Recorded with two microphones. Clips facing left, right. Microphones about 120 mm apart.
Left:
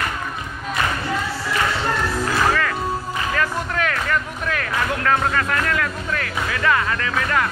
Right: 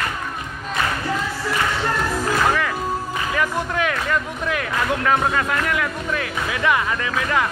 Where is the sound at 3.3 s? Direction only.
15° right (ahead or behind).